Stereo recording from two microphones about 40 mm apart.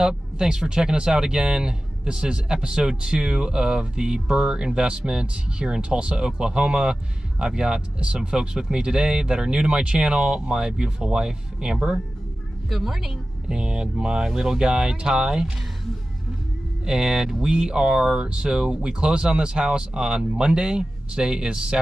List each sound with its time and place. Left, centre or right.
0.0 s speech: centre
12.6 s a woman's voice: centre
13.5 s speech: right
16.8 s speech: centre